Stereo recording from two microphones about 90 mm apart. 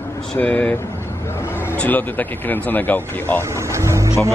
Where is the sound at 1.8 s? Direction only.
20° left (ahead or behind).